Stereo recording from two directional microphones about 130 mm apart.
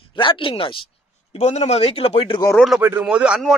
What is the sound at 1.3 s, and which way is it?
Speech, 60° left (ahead or behind).